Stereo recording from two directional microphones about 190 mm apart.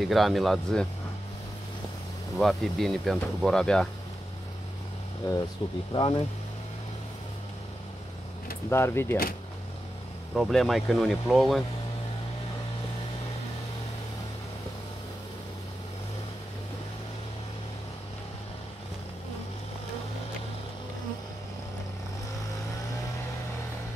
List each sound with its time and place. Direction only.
0.0 s speech: centre (ahead or behind)
2.3 s speech: centre (ahead or behind)
5.6 s speech: 25° left (ahead or behind)
8.6 s speech: 15° left (ahead or behind)
10.3 s speech: centre (ahead or behind)